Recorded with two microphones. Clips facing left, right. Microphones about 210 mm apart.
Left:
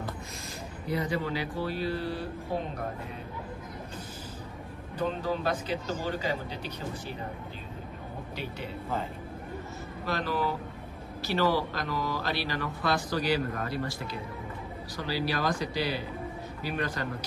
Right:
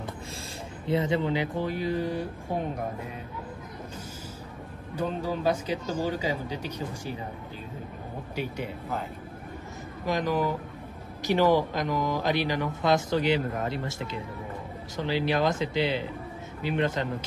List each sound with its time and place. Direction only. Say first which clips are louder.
0.8 s speech: right 5 dB; 25° right (ahead or behind)
4.9 s speech: right 1 dB; 10° right (ahead or behind)
10.0 s speech: right 4 dB; 15° right (ahead or behind)